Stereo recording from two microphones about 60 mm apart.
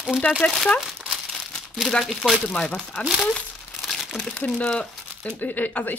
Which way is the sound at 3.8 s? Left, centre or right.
Centre.